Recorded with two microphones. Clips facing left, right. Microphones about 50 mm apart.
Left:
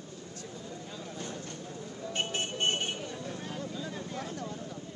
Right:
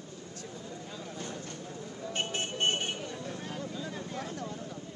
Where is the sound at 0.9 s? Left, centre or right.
Right.